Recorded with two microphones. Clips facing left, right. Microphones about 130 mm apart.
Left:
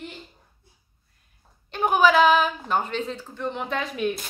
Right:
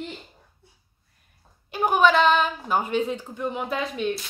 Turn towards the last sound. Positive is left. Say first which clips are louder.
# even
turn(degrees=0)  # may be behind; listen again after turning